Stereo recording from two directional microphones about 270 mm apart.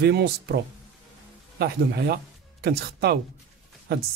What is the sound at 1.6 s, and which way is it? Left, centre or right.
Speech, right.